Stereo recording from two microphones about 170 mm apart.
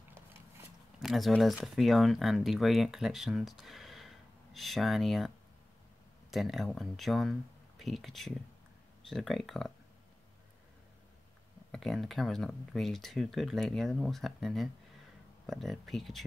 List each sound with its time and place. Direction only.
0.9 s speech: centre (ahead or behind)
6.3 s speech: centre (ahead or behind)
11.7 s speech: centre (ahead or behind)